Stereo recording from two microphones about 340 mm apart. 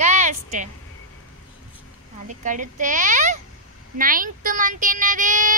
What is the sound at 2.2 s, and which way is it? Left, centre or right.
Speech, right.